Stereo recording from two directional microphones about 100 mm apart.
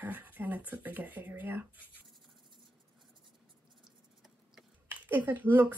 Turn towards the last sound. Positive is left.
turn(degrees=-20)  # may be behind; listen again after turning